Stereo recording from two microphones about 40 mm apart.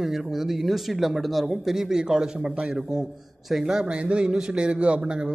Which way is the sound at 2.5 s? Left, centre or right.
Right.